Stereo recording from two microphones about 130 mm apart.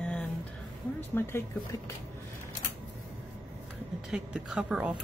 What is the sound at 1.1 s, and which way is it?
Speech, 20° left (ahead or behind).